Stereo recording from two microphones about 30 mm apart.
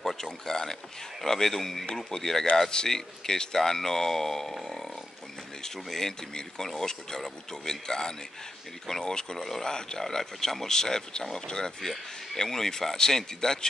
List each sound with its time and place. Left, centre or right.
0.0 s mechanisms: centre
0.5 s speech: centre
5.9 s speech: centre